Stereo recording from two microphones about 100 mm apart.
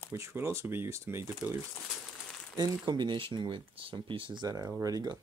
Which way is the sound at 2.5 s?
50° right (ahead or behind).